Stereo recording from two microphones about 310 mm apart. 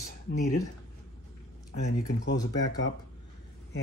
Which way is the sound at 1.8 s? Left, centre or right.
Left.